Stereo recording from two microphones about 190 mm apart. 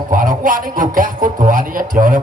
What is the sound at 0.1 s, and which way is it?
A man's voice, 45° right (ahead or behind).